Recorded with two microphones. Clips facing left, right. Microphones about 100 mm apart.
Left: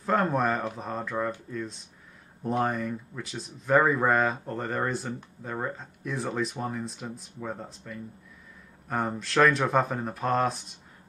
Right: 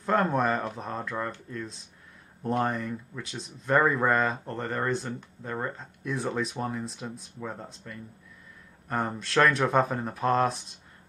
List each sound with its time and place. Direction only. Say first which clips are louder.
0.0 s speech: even; centre (ahead or behind)